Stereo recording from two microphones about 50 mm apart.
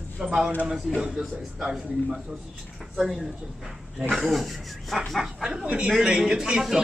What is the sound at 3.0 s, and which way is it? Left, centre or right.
A man's voice, centre.